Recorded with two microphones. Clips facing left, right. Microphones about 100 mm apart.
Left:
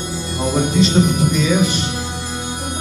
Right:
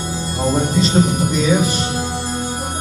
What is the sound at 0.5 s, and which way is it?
Music, 40° right (ahead or behind).